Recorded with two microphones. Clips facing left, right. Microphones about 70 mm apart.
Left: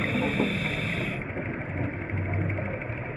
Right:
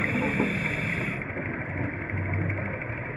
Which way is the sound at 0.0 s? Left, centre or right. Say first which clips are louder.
Even; right.